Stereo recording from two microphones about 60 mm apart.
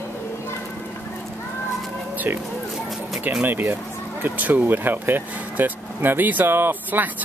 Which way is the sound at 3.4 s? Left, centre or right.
Right.